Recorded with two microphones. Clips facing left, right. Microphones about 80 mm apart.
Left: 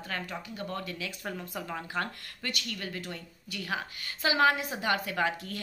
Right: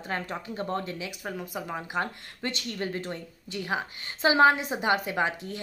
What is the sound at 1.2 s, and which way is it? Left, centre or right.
Speech, centre.